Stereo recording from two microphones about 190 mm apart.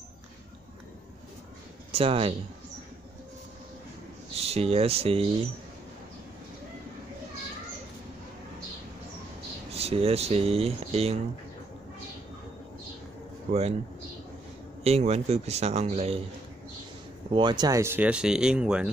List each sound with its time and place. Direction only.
1.9 s speech: 30° right (ahead or behind)
4.4 s speech: 35° right (ahead or behind)
9.7 s speech: 30° right (ahead or behind)
13.5 s a man's voice: 35° right (ahead or behind)
14.8 s a man's voice: 35° right (ahead or behind)
17.3 s speech: 25° right (ahead or behind); by 18.9 s 5° right (ahead or behind)